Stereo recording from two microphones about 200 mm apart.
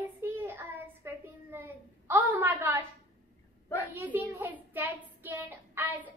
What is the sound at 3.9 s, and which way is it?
A woman's voice, 10° right (ahead or behind).